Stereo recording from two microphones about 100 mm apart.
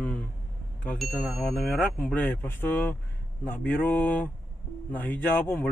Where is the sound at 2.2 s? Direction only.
20° left (ahead or behind).